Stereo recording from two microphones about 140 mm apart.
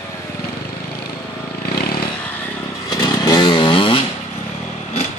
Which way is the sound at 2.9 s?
25° left (ahead or behind).